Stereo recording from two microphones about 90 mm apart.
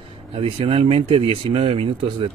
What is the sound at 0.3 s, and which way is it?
Speech, 90° right.